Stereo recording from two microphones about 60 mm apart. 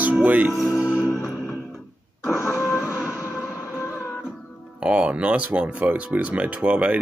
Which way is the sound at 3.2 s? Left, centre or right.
Left.